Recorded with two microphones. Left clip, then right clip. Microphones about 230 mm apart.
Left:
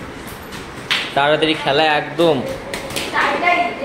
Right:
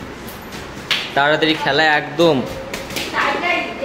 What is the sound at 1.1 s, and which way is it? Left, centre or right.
Speech, centre.